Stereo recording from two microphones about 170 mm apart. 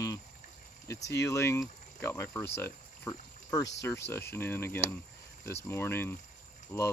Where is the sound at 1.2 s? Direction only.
15° left (ahead or behind).